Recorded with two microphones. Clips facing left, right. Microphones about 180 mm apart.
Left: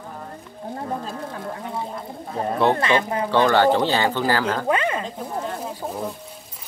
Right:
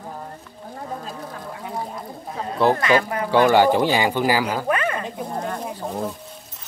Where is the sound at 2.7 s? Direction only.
25° left (ahead or behind).